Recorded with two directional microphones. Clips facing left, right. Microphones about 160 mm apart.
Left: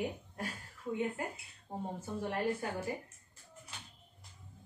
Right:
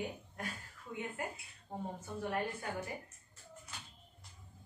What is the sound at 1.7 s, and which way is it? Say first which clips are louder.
Speech: left 2 dB; 30° left (ahead or behind).